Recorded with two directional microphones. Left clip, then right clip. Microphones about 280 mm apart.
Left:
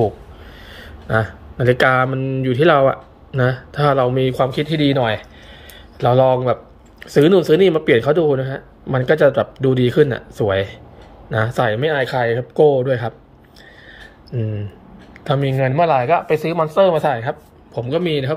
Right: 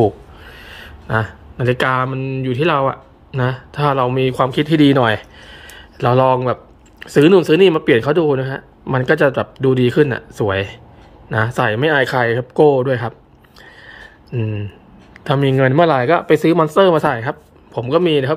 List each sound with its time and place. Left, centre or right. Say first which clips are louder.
0.5 s speech: right 3 dB; centre
13.8 s a sound: right 2 dB; centre
15.2 s speech: right 4 dB; centre
15.8 s speech: left 1 dB; right
16.3 s speech: right 5 dB; right